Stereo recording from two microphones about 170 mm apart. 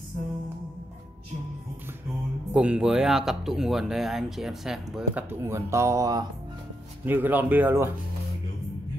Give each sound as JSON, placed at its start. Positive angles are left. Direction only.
{"t": 2.5, "sound": "speech", "side_deg": -5}
{"t": 5.4, "sound": "speech", "side_deg": -15}